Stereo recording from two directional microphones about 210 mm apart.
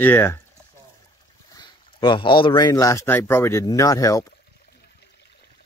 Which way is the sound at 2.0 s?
25° left (ahead or behind).